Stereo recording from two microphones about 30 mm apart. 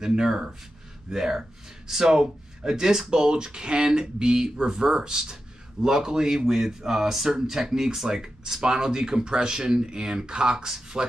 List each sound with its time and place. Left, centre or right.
0.1 s speech: centre
3.1 s speech: right